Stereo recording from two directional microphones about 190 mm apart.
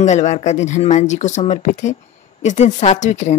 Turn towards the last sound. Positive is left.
turn(degrees=40)  # may be behind; listen again after turning